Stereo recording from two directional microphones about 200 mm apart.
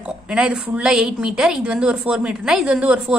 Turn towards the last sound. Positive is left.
turn(degrees=-5)  # may be behind; listen again after turning